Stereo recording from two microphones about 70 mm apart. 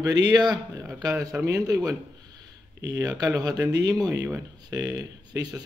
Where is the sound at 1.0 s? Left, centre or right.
Right.